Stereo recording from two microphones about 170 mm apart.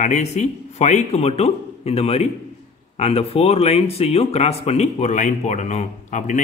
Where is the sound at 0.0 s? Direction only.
45° left (ahead or behind).